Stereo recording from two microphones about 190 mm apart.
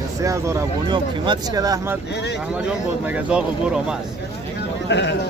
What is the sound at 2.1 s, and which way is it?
Speech, 65° left (ahead or behind).